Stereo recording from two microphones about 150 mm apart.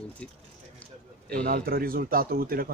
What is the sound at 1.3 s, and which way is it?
Speech, 80° right.